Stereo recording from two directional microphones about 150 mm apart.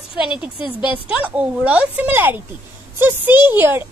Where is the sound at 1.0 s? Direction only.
10° right (ahead or behind).